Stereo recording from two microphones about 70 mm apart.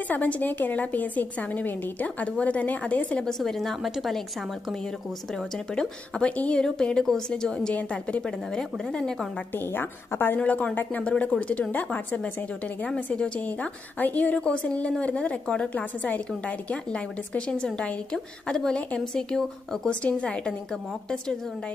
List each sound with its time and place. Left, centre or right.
0.1 s a woman's voice: left; by 4.2 s centre
5.8 s a woman's voice: centre
9.6 s a woman's voice: left; by 20.5 s centre